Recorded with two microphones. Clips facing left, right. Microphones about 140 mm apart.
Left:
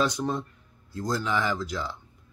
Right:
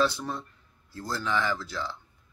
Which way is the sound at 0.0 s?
15° left (ahead or behind).